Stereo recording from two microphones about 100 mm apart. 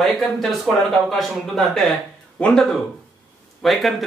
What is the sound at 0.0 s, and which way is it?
Speech, centre (ahead or behind).